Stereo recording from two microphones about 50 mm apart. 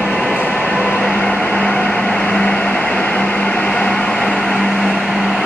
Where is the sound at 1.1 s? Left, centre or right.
Left.